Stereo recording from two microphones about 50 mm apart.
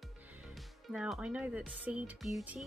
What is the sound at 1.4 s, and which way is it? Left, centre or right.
Speech, right.